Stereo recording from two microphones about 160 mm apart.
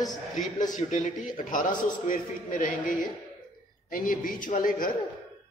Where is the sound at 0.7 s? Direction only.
50° left (ahead or behind).